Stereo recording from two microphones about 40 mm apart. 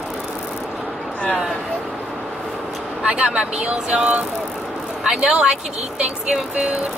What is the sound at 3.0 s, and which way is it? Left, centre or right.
Speech, right.